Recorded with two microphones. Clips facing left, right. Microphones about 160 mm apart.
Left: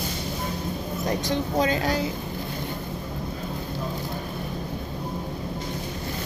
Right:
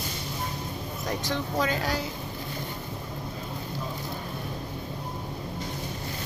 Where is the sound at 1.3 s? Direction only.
20° left (ahead or behind).